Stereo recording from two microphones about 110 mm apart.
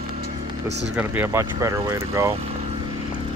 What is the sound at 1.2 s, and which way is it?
Speech, 25° right (ahead or behind).